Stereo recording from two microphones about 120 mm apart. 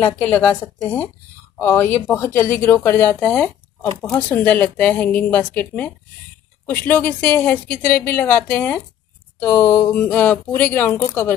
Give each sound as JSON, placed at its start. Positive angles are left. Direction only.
{"t": 0.0, "sound": "a woman's voice", "side_deg": 15}